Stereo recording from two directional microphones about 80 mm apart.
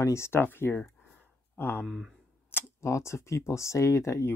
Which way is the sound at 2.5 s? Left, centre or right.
Left.